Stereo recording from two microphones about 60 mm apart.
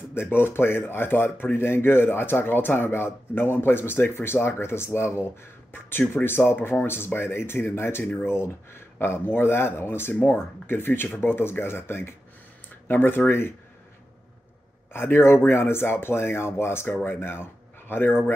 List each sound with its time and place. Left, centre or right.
0.1 s speech: left
14.9 s speech: left